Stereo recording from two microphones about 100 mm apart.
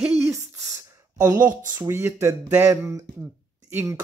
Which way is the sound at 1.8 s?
20° right (ahead or behind).